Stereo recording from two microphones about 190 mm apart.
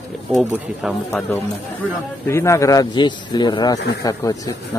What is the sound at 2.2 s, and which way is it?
A man's voice, 15° left (ahead or behind).